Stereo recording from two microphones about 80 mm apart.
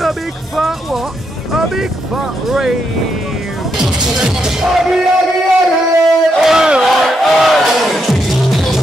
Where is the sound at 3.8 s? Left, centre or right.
Centre.